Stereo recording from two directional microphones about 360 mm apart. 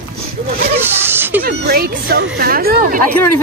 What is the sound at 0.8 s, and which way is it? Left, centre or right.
Speech, centre.